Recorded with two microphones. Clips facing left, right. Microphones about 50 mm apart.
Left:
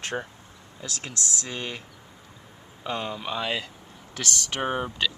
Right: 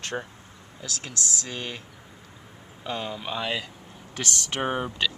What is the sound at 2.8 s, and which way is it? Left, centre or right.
Speech, centre.